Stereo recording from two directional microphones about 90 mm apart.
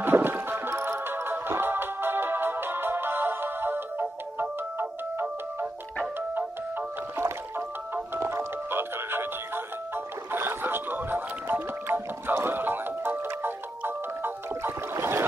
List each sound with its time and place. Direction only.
0.0 s music: 25° right (ahead or behind)
7.2 s music: 30° right (ahead or behind)